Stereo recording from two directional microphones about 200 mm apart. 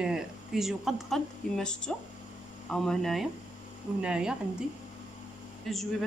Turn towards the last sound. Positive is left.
turn(degrees=0)  # may be behind; listen again after turning